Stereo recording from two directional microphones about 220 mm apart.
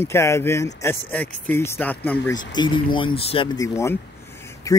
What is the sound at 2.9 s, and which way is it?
Speech, 25° left (ahead or behind).